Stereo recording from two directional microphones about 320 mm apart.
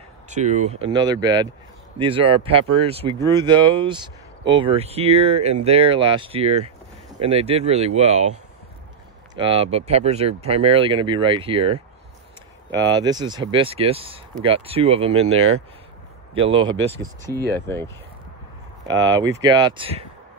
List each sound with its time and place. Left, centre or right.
0.3 s speech: right
17.6 s speech: centre
18.9 s speech: centre